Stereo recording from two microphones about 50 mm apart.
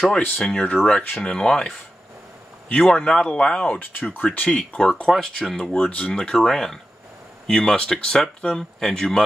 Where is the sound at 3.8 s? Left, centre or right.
Left.